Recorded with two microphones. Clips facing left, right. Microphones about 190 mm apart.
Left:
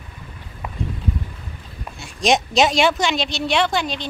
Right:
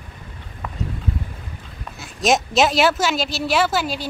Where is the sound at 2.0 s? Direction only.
Centre (ahead or behind).